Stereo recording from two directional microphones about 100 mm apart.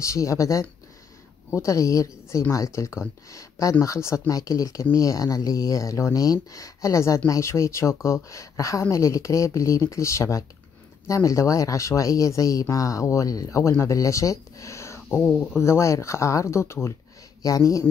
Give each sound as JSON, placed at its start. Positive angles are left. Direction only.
{"t": 0.0, "sound": "speech", "side_deg": 30}
{"t": 15.0, "sound": "speech", "side_deg": 20}